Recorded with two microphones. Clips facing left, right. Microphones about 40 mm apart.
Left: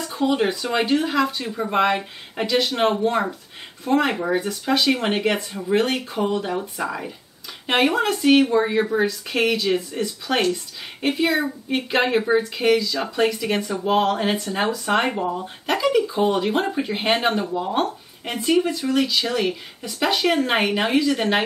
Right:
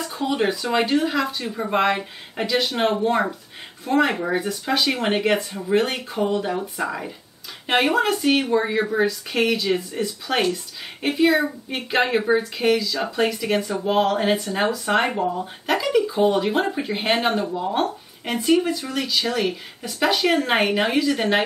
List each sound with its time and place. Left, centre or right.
0.1 s speech: centre